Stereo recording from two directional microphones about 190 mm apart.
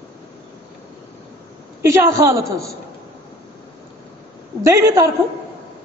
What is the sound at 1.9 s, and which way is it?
Speech, 15° right (ahead or behind).